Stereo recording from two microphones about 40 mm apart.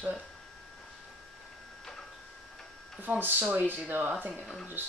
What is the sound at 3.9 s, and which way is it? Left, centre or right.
Speech, right.